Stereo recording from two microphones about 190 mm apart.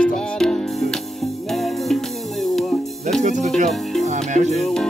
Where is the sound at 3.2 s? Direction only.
40° right (ahead or behind).